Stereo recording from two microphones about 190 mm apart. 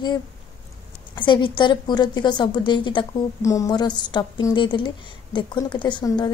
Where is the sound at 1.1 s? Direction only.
25° left (ahead or behind).